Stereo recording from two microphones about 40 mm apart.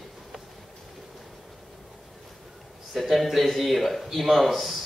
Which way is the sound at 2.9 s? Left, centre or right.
Centre.